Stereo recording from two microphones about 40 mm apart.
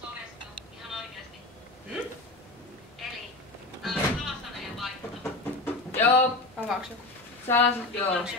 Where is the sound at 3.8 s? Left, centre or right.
Centre.